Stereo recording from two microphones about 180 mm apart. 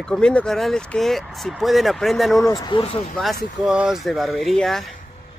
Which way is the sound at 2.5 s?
20° left (ahead or behind).